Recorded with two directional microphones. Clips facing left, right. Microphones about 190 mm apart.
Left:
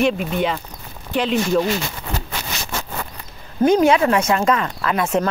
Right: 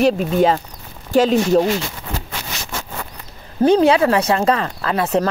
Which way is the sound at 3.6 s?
30° right (ahead or behind).